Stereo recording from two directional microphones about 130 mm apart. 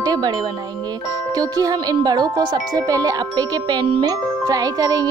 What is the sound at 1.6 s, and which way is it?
Wind chime, 30° right (ahead or behind).